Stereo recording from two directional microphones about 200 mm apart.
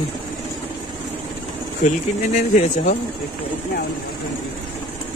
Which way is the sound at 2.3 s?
40° left (ahead or behind).